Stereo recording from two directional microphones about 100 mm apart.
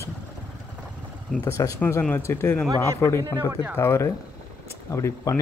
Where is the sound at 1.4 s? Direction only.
30° left (ahead or behind).